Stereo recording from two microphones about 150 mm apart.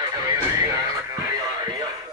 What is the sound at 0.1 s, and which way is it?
Music, 25° right (ahead or behind).